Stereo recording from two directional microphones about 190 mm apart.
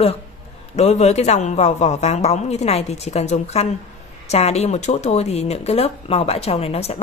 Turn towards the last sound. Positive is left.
turn(degrees=35)  # may be behind; listen again after turning